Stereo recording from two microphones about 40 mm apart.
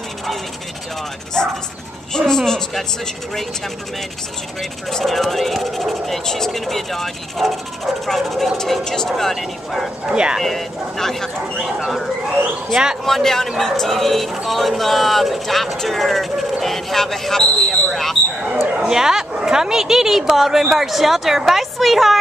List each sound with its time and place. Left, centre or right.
1.3 s speech: centre
4.6 s speech: centre
8.8 s speech: centre
9.1 s speech: centre
10.1 s speech: right
10.4 s speech: centre
11.5 s speech: centre
18.8 s speech: centre